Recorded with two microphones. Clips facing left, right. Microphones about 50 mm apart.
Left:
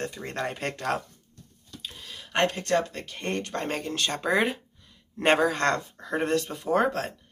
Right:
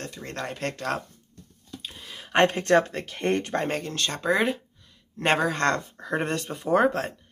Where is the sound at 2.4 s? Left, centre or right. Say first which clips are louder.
Right 4 dB; right.